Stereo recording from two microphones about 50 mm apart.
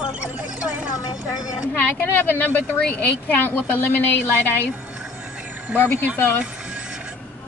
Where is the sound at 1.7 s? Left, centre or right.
Left.